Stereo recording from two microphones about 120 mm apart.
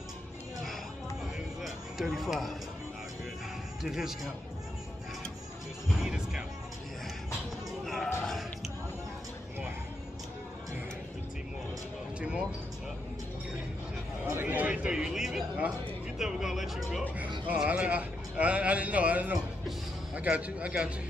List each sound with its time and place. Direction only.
1.6 s music: centre (ahead or behind)
3.8 s speech: 5° right (ahead or behind)
5.9 s music: 5° right (ahead or behind)
7.8 s a sound: centre (ahead or behind)
12.2 s speech: 10° right (ahead or behind)
14.3 s a sound: 15° right (ahead or behind)
16.2 s a man's voice: 5° right (ahead or behind)